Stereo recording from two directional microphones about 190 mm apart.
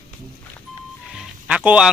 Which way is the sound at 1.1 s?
5° right (ahead or behind).